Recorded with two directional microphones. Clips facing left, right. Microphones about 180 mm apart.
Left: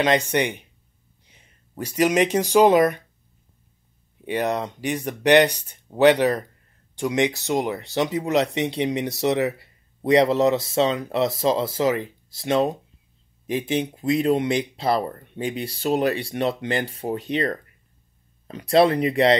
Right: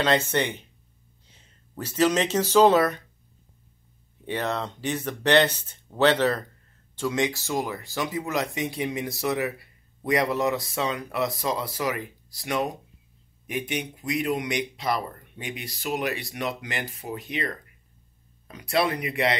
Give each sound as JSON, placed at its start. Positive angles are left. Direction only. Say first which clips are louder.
{"t": 0.0, "sound": "speech", "louder": "left 3 dB", "side_deg": 15}
{"t": 4.2, "sound": "speech", "louder": "left 4 dB", "side_deg": 15}